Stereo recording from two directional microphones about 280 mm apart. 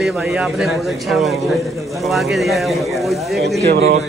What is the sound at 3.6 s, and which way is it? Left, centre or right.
Speech, right.